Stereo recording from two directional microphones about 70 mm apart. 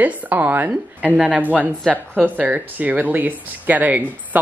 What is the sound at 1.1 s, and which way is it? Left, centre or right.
Speech, centre.